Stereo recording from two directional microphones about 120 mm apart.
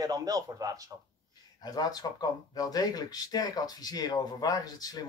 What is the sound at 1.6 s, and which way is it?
Speech, 30° left (ahead or behind).